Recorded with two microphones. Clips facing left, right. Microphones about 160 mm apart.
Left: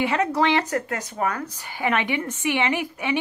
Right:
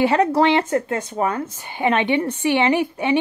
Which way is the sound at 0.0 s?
35° right (ahead or behind).